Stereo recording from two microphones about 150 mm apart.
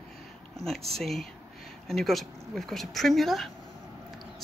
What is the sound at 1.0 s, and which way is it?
Speech, centre (ahead or behind).